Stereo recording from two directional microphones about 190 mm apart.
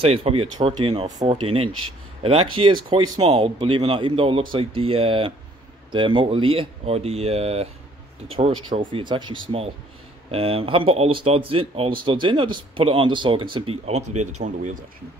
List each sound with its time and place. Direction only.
0.0 s speech: 30° right (ahead or behind)